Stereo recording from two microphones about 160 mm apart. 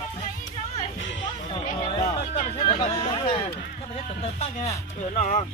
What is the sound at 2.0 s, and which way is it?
Music, 45° left (ahead or behind).